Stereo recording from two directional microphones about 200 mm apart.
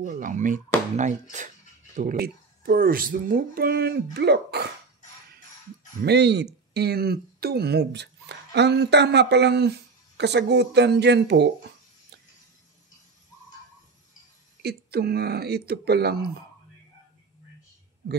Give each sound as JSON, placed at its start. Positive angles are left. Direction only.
{"t": 0.0, "sound": "speech", "side_deg": -40}
{"t": 6.0, "sound": "speech", "side_deg": -55}
{"t": 14.6, "sound": "speech", "side_deg": -55}